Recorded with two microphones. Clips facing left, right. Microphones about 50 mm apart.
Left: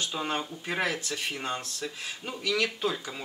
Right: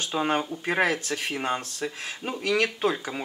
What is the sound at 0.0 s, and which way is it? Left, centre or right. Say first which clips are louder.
Speech: right 6 dB; right.